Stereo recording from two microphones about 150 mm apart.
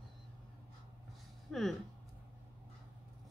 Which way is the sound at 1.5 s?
Centre (ahead or behind).